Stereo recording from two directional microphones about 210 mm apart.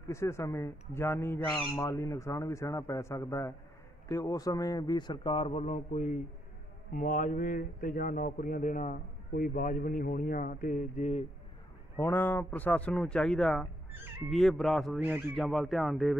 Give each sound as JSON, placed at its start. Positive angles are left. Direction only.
{"t": 0.1, "sound": "a man's voice", "side_deg": 15}
{"t": 12.0, "sound": "speech", "side_deg": 10}